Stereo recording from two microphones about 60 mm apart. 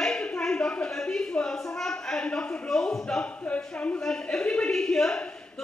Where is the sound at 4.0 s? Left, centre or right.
Centre.